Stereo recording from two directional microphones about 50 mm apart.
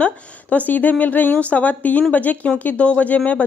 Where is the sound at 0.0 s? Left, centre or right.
Left.